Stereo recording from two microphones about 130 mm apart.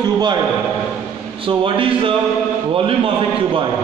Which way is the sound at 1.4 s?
40° right (ahead or behind).